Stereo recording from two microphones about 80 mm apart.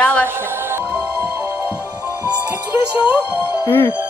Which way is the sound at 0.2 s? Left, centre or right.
Right.